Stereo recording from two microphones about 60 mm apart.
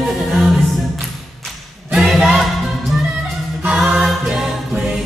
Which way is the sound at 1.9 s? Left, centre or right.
Centre.